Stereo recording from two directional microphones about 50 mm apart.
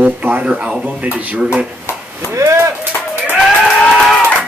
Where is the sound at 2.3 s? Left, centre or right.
Right.